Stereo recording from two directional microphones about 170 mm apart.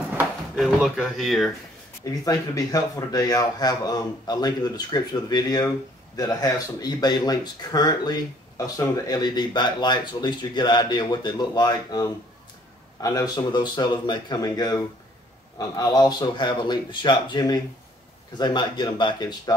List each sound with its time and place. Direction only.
0.6 s speech: centre (ahead or behind)
2.0 s speech: 20° left (ahead or behind)